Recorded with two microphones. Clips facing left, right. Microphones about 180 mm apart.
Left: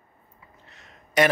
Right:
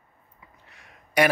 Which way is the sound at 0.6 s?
10° right (ahead or behind).